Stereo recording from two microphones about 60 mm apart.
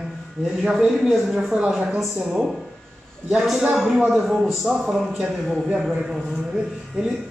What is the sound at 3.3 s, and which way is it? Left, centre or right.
A man's voice, centre.